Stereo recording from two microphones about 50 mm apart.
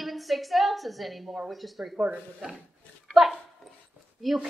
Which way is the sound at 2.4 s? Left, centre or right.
Centre.